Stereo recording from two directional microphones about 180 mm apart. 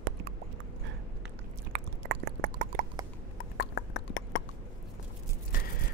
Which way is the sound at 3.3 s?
65° left (ahead or behind).